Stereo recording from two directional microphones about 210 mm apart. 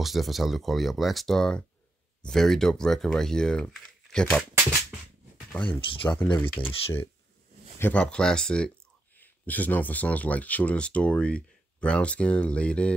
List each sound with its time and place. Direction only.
0.0 s speech: centre (ahead or behind)
5.7 s speech: 25° left (ahead or behind)
6.0 s speech: 5° left (ahead or behind)
7.8 s speech: 5° left (ahead or behind)